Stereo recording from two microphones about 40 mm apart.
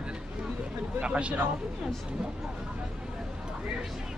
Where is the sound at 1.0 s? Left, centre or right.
Right.